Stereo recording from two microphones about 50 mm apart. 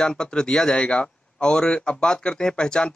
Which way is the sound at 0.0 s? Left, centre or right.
Centre.